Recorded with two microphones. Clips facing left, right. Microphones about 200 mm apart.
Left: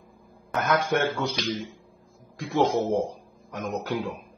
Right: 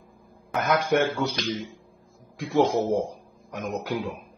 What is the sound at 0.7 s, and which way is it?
A man's voice, 10° right (ahead or behind).